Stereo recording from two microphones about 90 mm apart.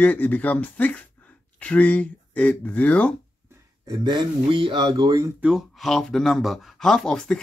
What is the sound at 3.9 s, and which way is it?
Speech, 55° right (ahead or behind).